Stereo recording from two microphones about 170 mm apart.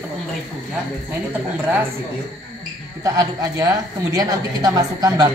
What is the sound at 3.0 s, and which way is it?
A woman's voice, 20° right (ahead or behind).